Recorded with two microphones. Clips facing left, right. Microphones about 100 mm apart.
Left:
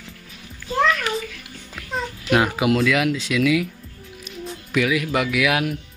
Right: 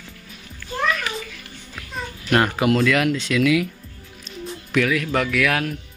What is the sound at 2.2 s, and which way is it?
Speech, 5° left (ahead or behind).